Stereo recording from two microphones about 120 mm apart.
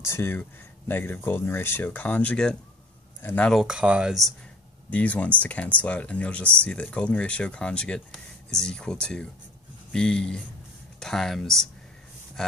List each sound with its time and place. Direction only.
0.0 s speech: 20° left (ahead or behind)
3.4 s speech: 5° right (ahead or behind)
4.9 s speech: 10° left (ahead or behind)